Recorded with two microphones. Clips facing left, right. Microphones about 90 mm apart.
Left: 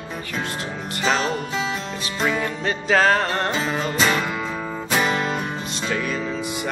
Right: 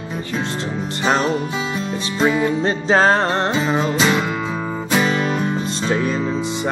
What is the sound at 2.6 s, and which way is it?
Music, 30° right (ahead or behind).